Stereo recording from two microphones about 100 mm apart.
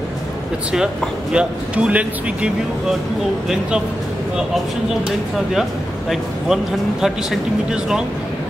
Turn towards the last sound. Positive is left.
turn(degrees=-5)  # may be behind; listen again after turning